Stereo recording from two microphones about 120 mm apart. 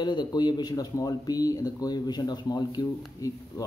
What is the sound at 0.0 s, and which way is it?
Speech, 35° left (ahead or behind).